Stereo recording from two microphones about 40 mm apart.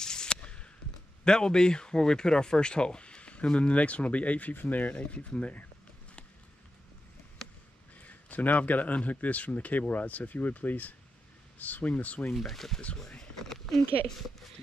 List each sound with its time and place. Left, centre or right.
0.0 s a sound: centre
1.2 s speech: centre; by 4.9 s left
4.9 s speech: left
8.0 s speech: left
12.4 s speech: centre
13.2 s a sound: centre